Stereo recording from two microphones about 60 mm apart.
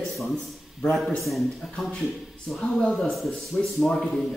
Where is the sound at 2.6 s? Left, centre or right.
Centre.